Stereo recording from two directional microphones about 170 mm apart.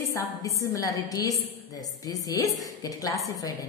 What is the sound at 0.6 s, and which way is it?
A woman's voice, 20° left (ahead or behind).